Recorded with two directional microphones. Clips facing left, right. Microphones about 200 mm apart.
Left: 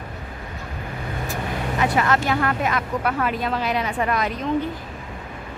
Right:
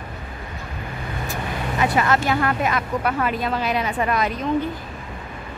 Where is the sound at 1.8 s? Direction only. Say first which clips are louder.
Right 1 dB; 5° right (ahead or behind).